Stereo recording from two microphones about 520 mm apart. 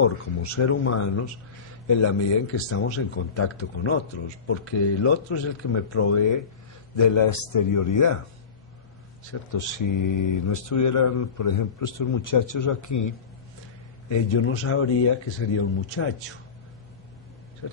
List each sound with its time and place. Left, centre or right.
0.4 s speech: left
9.5 s speech: left
14.0 s speech: left